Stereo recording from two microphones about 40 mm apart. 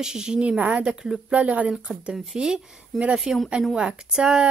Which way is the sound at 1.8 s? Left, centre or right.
Right.